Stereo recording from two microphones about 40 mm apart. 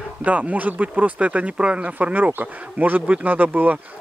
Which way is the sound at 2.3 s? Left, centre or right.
Right.